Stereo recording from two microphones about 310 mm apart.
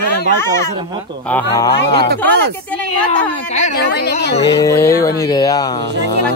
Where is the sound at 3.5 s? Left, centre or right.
Left.